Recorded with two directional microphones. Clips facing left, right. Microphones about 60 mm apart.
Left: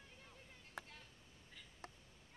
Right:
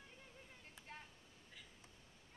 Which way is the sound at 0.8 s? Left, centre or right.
Left.